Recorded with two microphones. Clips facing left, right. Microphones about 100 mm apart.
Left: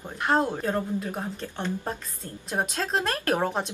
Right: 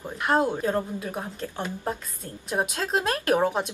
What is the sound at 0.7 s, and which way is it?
A woman's voice, 15° right (ahead or behind).